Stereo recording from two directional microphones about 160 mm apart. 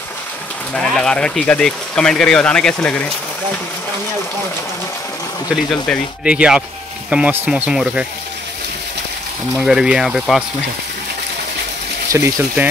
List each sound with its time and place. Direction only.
0.7 s speech: 5° left (ahead or behind)
6.2 s speech: 5° right (ahead or behind)
9.6 s speech: 5° right (ahead or behind)
12.1 s speech: 15° right (ahead or behind)